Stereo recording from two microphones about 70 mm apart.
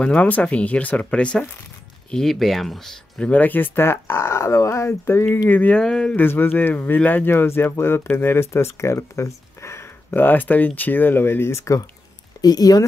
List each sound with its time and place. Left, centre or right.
0.0 s speech: centre
3.3 s speech: left
5.5 s speech: left
5.8 s speech: centre
6.1 s speech: left
7.2 s speech: left
10.2 s speech: left
12.4 s speech: left